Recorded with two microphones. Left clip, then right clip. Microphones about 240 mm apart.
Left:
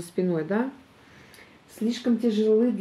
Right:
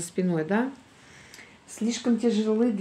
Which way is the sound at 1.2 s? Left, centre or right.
Right.